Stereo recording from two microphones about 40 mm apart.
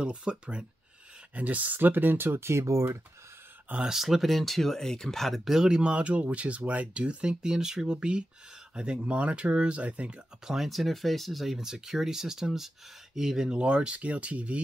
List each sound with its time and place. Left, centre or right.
0.0 s speech: right
1.3 s speech: right
1.8 s speech: right
3.9 s speech: centre
5.4 s speech: centre; by 7.3 s right
7.4 s speech: centre; by 10.2 s right
10.4 s speech: centre
13.5 s speech: right